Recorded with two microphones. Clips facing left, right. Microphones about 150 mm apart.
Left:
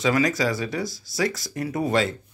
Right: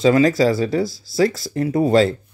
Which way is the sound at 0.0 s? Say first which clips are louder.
Right 8 dB; 30° right (ahead or behind).